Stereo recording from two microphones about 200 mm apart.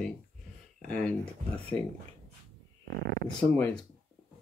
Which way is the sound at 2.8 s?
65° right (ahead or behind).